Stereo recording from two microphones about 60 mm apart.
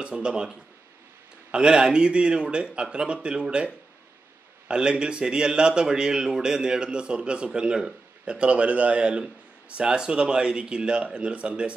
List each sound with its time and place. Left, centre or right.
0.0 s a man's voice: centre